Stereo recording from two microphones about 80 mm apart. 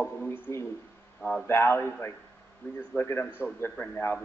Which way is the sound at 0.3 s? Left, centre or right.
Left.